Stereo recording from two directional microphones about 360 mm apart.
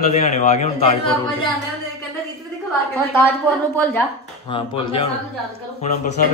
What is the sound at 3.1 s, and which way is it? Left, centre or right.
A woman's voice, centre.